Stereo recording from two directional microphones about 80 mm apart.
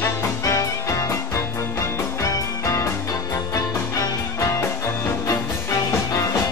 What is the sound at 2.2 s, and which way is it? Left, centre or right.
Music, left.